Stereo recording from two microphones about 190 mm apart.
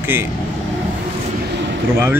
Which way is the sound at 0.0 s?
10° right (ahead or behind).